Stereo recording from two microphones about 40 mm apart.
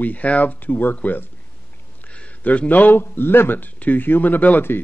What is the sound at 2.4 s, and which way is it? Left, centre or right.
Speech, left.